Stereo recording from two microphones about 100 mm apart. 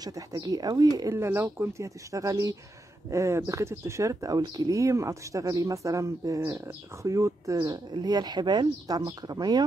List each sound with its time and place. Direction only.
0.0 s speech: 35° right (ahead or behind)
1.1 s speech: 25° right (ahead or behind)
7.5 s speech: 45° right (ahead or behind)